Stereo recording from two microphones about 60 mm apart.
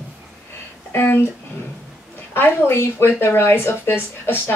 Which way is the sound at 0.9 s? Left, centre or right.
Left.